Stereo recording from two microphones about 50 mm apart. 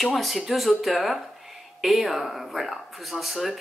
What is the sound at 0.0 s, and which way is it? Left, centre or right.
Speech, centre.